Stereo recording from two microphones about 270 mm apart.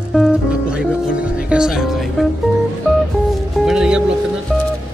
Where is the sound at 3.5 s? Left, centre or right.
Centre.